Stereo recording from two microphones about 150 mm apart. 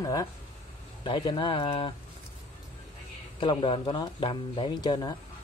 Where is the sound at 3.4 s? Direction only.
35° left (ahead or behind).